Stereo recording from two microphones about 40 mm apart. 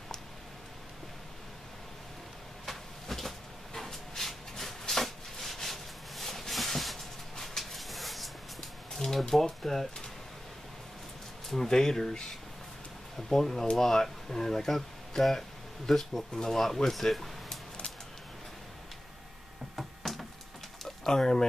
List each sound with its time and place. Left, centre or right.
2.6 s cupboard open or close: centre
9.3 s speech: centre
11.4 s speech: centre
13.3 s speech: centre
19.7 s a sound: centre
20.8 s pigeon: centre